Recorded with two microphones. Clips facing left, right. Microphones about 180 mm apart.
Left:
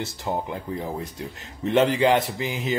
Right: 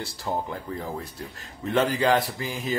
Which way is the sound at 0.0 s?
20° left (ahead or behind).